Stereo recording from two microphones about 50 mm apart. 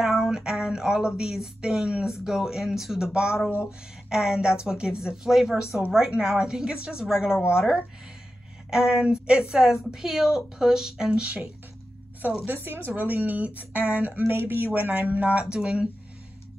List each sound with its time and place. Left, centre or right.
0.0 s a woman's voice: centre
12.4 s speech: right
14.2 s speech: right; by 15.9 s centre